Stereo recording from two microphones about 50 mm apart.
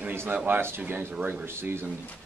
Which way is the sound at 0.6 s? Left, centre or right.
Right.